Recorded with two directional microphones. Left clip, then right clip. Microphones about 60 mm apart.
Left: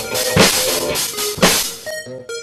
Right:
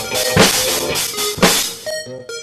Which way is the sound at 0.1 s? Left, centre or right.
Centre.